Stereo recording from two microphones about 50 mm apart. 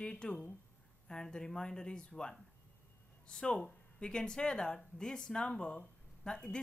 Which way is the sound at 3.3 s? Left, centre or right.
Centre.